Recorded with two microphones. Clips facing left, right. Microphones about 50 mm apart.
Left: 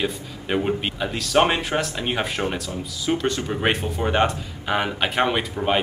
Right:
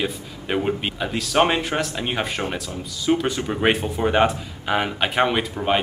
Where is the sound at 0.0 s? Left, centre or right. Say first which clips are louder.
Even; centre.